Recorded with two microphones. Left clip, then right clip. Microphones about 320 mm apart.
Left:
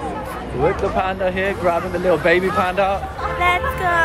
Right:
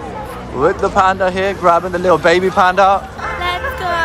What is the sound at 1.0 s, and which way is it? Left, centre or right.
A man's voice, centre.